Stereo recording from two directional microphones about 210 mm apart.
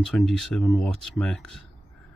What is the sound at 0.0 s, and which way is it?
Speech, centre (ahead or behind).